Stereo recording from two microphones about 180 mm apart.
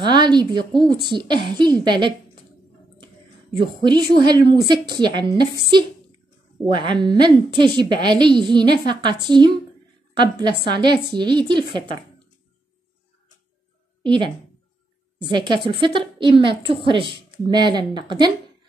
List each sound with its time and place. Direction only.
0.0 s a woman's voice: 25° right (ahead or behind)
3.5 s a woman's voice: 25° right (ahead or behind)
14.0 s a woman's voice: 25° right (ahead or behind)
15.3 s a woman's voice: 25° right (ahead or behind)